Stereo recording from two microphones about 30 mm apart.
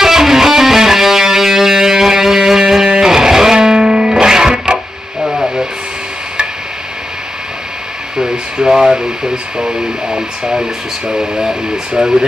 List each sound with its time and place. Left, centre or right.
0.0 s music: centre
5.2 s a sound: centre
8.2 s speech: right